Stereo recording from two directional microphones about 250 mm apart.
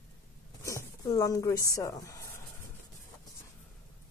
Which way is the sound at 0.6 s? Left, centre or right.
Centre.